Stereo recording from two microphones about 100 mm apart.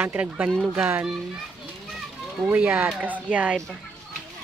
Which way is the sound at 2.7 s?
15° right (ahead or behind).